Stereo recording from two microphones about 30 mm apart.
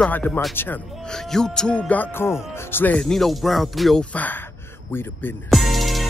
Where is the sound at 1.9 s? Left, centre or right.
Left.